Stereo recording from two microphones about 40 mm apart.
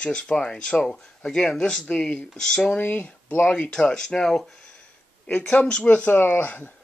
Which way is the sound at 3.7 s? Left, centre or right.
Centre.